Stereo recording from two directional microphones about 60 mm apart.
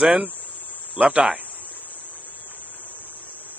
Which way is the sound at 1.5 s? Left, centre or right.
Left.